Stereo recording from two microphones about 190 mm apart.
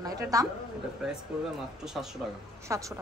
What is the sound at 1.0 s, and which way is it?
Speech, 5° right (ahead or behind).